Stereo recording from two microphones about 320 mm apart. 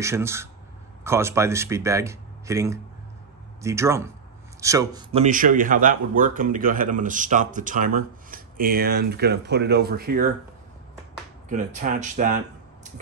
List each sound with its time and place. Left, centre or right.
0.0 s speech: centre; by 10.3 s right
11.4 s speech: right